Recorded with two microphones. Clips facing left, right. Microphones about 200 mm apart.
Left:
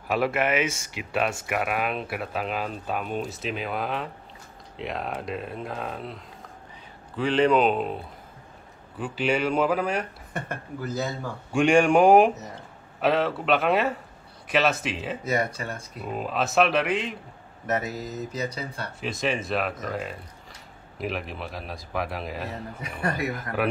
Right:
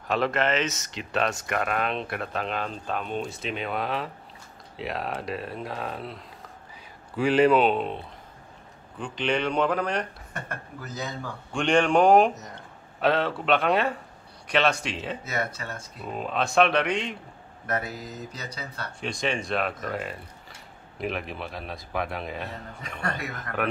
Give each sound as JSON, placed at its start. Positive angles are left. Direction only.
{"t": 0.1, "sound": "speech", "side_deg": 10}
{"t": 18.4, "sound": "speech", "side_deg": 25}
{"t": 18.9, "sound": "speech", "side_deg": 5}